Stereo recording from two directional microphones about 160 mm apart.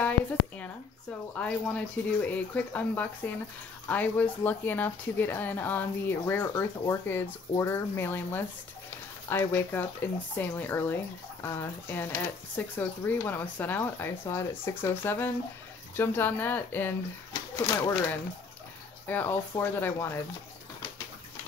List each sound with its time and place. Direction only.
1.3 s speech: 10° left (ahead or behind)
19.0 s speech: 10° left (ahead or behind)